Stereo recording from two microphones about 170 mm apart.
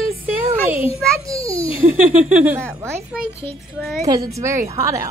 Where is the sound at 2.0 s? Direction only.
10° right (ahead or behind).